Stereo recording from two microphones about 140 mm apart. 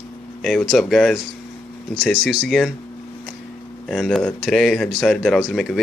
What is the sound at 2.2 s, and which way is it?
Speech, 5° right (ahead or behind).